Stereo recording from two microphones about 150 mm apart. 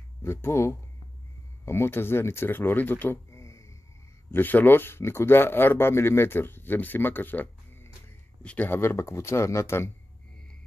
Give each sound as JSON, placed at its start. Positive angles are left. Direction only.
{"t": 0.2, "sound": "speech", "side_deg": 15}